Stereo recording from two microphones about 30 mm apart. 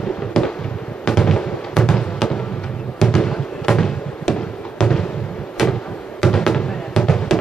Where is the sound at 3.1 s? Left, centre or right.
Centre.